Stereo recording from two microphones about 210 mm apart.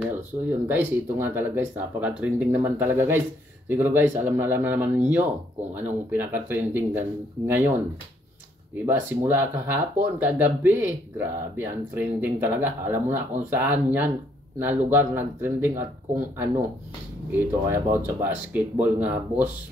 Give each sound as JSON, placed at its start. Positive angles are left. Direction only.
{"t": 0.0, "sound": "speech", "side_deg": -10}
{"t": 8.8, "sound": "speech", "side_deg": -10}